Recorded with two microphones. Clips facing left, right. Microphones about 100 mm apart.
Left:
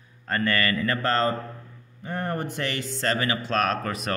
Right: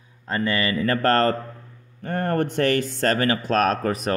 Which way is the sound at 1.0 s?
55° right (ahead or behind).